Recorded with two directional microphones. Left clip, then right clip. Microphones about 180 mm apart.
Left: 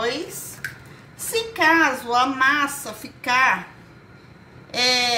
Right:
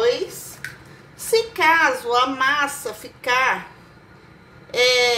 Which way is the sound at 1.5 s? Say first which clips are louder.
Left 1 dB; 25° right (ahead or behind).